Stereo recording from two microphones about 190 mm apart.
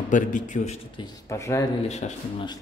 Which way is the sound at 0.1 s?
40° left (ahead or behind).